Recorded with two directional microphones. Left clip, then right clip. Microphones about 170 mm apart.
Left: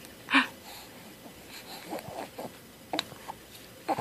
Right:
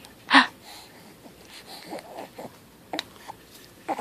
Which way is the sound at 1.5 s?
20° right (ahead or behind).